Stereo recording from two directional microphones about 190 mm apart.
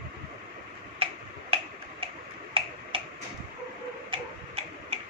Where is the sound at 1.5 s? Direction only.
30° right (ahead or behind).